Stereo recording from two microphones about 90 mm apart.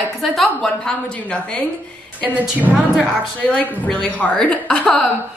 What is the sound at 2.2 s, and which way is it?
Speech, 20° right (ahead or behind).